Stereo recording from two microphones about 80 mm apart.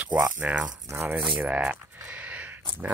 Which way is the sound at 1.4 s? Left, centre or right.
Centre.